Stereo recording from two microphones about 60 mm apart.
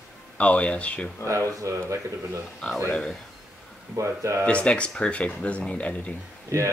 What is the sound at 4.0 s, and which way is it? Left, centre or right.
Speech, right.